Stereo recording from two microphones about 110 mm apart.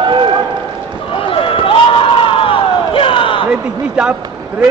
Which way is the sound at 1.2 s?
55° left (ahead or behind).